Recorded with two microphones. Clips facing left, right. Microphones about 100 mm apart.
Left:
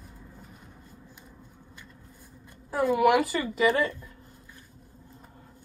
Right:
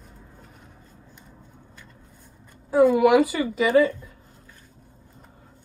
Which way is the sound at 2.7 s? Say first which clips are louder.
Right 9 dB; 5° left (ahead or behind).